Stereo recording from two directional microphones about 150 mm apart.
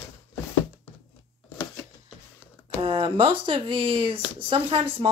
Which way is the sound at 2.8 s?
35° right (ahead or behind).